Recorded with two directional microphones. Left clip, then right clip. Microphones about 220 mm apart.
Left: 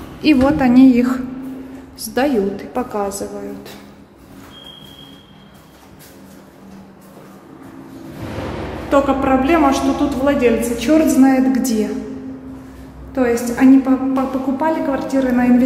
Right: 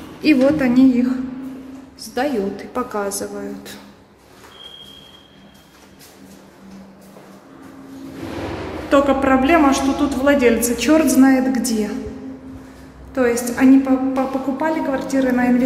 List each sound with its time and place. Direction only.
0.0 s a woman's voice: 10° left (ahead or behind)
2.3 s a woman's voice: centre (ahead or behind)
8.0 s a sound: centre (ahead or behind)
9.4 s a woman's voice: centre (ahead or behind)
10.4 s a man's voice: 15° right (ahead or behind)
11.1 s a woman's voice: centre (ahead or behind)